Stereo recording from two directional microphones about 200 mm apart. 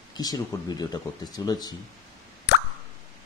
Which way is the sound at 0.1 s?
20° left (ahead or behind).